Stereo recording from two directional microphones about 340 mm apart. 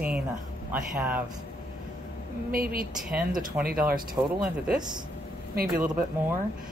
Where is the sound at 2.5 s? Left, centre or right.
Right.